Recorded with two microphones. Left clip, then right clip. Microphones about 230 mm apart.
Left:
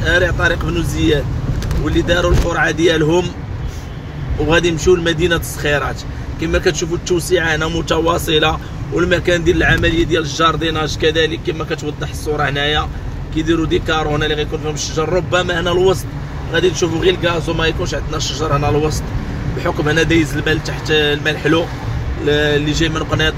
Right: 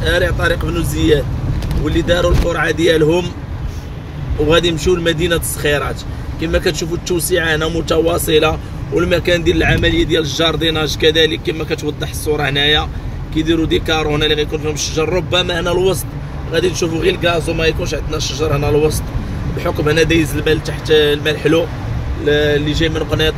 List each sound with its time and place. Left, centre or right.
0.0 s speech: centre
4.5 s speech: centre